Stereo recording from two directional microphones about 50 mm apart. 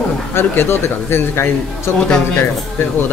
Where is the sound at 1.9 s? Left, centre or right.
Centre.